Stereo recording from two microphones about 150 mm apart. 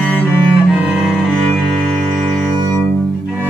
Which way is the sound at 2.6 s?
20° left (ahead or behind).